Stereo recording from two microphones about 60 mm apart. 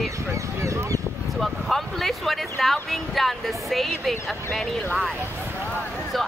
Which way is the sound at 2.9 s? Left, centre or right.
Centre.